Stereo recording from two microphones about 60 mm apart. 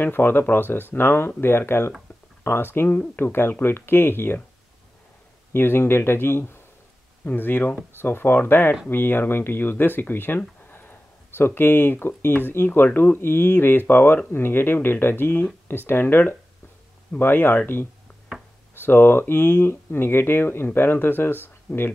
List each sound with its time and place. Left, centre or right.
0.0 s speech: left
5.5 s speech: left
21.7 s speech: centre